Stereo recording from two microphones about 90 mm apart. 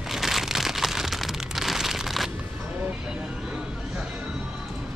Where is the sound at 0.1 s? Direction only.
Centre (ahead or behind).